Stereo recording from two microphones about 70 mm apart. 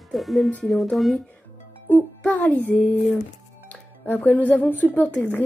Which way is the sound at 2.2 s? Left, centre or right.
Left.